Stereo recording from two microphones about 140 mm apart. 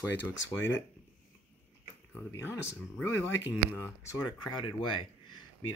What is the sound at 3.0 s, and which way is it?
Speech, 15° left (ahead or behind).